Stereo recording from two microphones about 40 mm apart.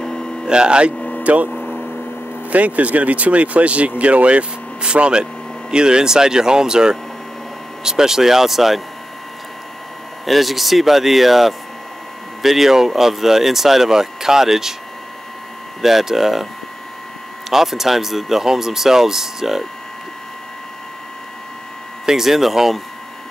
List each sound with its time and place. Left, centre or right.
0.5 s speech: right
1.2 s speech: right
2.5 s speech: right; by 8.8 s centre
10.2 s speech: centre
15.8 s speech: centre
17.5 s speech: centre
22.0 s speech: centre